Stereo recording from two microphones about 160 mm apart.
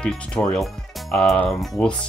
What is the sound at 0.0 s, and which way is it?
Speech, 5° left (ahead or behind).